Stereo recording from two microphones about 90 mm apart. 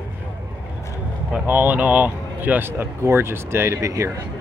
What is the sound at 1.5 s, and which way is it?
Speech, 20° right (ahead or behind).